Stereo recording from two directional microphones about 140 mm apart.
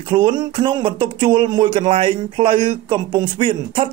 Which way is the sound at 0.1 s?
35° right (ahead or behind).